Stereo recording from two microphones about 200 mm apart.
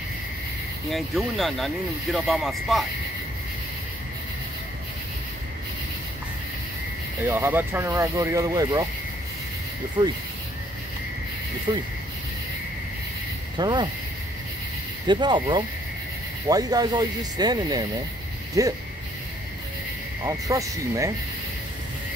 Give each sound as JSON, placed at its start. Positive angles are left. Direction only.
{"t": 0.9, "sound": "speech", "side_deg": 0}
{"t": 7.2, "sound": "speech", "side_deg": -10}
{"t": 10.0, "sound": "speech", "side_deg": -25}
{"t": 11.7, "sound": "speech", "side_deg": -20}
{"t": 13.6, "sound": "speech", "side_deg": -20}
{"t": 15.0, "sound": "speech", "side_deg": -20}
{"t": 20.2, "sound": "speech", "side_deg": -15}